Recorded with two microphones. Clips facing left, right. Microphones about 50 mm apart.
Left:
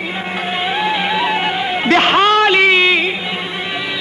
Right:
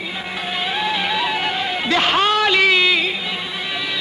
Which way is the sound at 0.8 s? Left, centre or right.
Centre.